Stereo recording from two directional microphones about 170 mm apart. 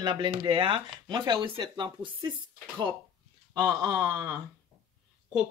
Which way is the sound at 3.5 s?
25° right (ahead or behind).